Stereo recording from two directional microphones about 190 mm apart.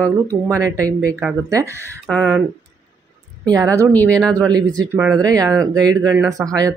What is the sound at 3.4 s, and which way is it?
Speech, 20° right (ahead or behind).